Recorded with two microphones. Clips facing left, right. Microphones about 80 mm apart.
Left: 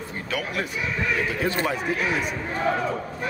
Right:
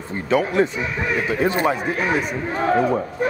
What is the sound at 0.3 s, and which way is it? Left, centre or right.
Speech, right.